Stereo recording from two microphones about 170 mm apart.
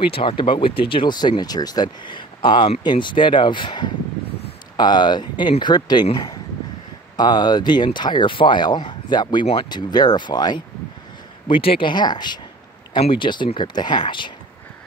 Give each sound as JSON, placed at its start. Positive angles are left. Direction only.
{"t": 0.0, "sound": "speech", "side_deg": 30}
{"t": 11.7, "sound": "speech", "side_deg": 25}